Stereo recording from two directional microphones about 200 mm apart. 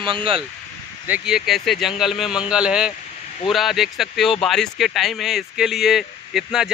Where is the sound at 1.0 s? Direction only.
5° right (ahead or behind).